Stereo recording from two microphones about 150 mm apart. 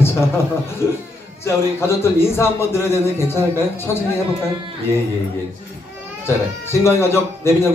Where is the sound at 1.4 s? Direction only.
15° left (ahead or behind).